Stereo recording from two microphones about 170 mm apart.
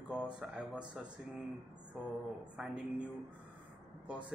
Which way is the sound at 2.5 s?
5° right (ahead or behind).